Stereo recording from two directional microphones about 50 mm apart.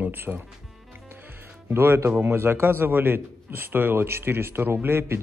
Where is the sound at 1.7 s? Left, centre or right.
Right.